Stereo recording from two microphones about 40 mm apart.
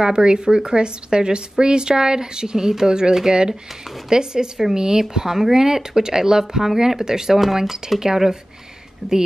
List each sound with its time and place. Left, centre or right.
0.0 s a woman's voice: centre